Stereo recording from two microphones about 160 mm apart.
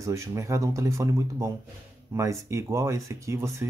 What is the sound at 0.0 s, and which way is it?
Speech, 20° right (ahead or behind).